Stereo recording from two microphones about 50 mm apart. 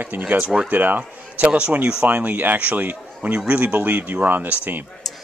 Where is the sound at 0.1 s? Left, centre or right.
Right.